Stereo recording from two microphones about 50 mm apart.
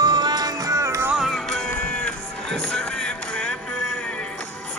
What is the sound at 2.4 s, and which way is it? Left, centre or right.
Music, centre.